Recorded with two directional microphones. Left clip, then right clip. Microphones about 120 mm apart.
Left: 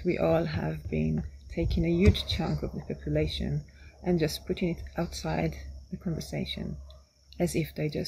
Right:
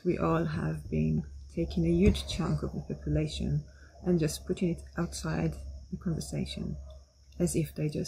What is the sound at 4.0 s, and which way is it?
Speech, 15° right (ahead or behind).